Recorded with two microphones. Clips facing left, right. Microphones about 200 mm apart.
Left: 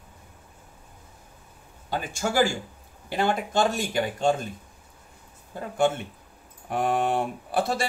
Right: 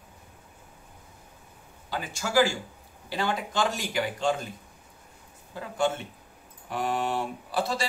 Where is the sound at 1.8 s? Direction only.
50° left (ahead or behind).